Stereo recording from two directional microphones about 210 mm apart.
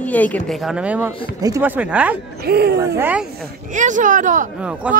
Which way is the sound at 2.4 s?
50° right (ahead or behind).